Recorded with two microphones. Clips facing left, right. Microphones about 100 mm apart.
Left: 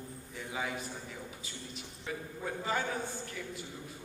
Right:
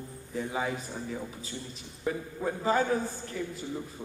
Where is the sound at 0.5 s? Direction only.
35° right (ahead or behind).